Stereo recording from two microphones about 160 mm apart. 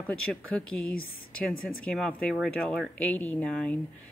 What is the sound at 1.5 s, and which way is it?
Speech, 65° left (ahead or behind).